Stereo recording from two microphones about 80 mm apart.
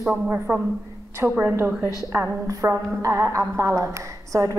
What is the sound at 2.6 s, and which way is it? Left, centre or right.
A woman's voice, right.